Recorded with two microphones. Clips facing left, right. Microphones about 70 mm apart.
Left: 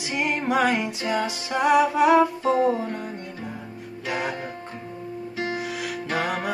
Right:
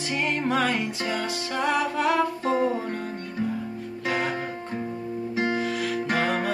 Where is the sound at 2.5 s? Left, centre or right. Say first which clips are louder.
Left 1 dB; right.